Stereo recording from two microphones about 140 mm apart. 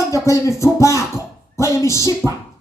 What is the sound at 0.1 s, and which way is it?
Speech, 20° left (ahead or behind).